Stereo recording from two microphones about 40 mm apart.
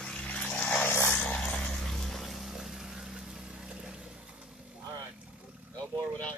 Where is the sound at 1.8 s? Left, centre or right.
Centre.